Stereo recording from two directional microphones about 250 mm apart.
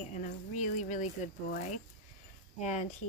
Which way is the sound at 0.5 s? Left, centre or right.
Left.